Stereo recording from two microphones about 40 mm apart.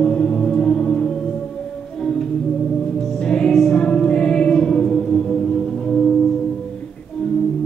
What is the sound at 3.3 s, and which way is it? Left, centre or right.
Music, centre.